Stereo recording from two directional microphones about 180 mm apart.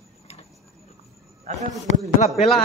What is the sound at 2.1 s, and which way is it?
Speech, 35° left (ahead or behind).